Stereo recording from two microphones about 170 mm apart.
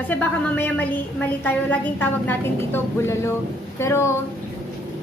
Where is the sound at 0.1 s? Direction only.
10° left (ahead or behind).